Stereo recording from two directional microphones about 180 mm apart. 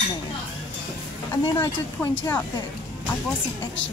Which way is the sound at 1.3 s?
15° left (ahead or behind).